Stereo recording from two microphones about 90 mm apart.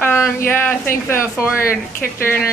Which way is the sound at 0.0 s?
25° left (ahead or behind).